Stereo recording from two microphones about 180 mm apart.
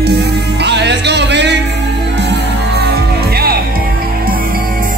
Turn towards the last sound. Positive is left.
turn(degrees=-60)  # may be behind; listen again after turning